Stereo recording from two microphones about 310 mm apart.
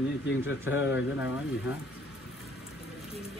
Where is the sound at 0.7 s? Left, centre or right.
Centre.